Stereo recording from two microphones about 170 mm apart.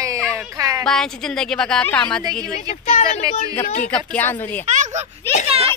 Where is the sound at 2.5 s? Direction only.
40° left (ahead or behind).